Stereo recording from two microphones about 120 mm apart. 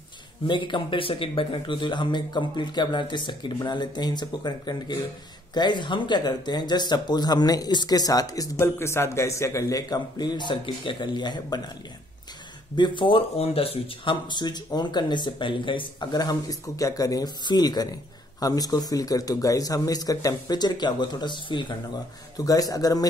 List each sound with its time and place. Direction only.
0.5 s speech: 40° left (ahead or behind)
12.7 s speech: 40° left (ahead or behind)
22.4 s speech: 30° left (ahead or behind)